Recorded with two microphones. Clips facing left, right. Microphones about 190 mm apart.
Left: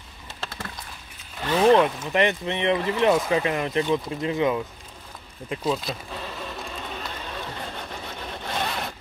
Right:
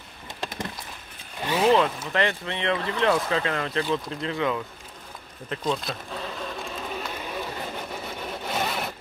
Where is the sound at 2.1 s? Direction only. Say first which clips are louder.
Left 4 dB; 20° left (ahead or behind).